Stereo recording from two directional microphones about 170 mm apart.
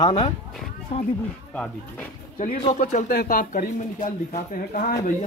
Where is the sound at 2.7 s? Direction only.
50° left (ahead or behind).